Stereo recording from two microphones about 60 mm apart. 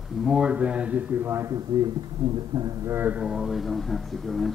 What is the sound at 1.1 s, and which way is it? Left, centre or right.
Speech, right.